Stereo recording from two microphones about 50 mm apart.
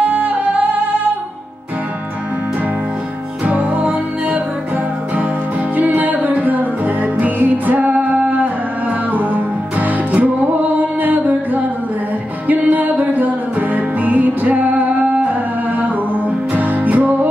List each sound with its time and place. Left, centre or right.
0.0 s music: right
3.4 s music: right
5.8 s music: right
16.5 s music: right